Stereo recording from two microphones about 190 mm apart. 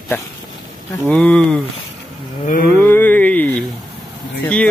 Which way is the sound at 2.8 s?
10° left (ahead or behind).